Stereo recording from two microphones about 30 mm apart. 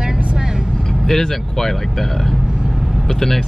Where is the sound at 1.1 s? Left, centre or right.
Centre.